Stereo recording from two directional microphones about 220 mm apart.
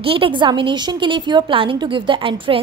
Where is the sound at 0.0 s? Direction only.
25° right (ahead or behind).